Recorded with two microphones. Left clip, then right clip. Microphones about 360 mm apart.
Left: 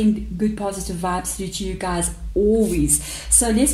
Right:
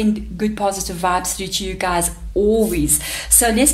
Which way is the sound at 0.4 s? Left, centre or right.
Right.